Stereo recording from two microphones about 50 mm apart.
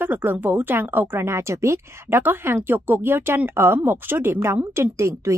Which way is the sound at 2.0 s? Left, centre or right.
Right.